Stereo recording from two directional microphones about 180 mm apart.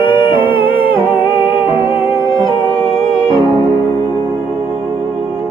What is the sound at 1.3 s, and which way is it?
Music, 10° right (ahead or behind).